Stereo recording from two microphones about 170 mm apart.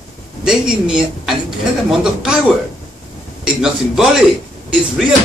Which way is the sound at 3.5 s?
5° right (ahead or behind).